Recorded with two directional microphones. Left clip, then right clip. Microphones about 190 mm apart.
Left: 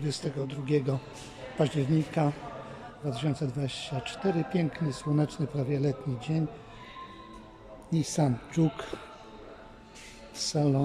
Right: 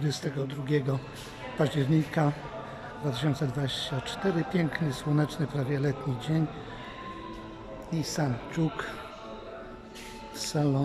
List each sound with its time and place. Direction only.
0.0 s speech: 5° left (ahead or behind)
7.9 s speech: 15° left (ahead or behind)
10.4 s speech: 10° left (ahead or behind)